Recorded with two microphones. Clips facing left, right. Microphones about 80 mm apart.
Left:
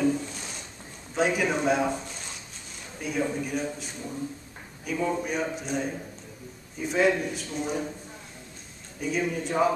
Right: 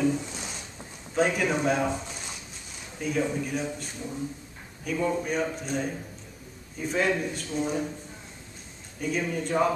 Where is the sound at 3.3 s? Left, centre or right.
Centre.